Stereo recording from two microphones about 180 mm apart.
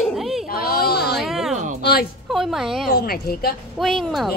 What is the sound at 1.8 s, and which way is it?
Speech, 60° left (ahead or behind).